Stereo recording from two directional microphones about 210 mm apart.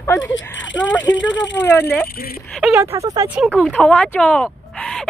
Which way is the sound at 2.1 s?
45° left (ahead or behind).